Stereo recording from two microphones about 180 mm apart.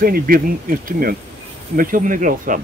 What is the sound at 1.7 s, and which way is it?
Speech, 50° right (ahead or behind).